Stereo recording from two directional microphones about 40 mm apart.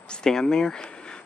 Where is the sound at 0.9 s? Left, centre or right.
Left.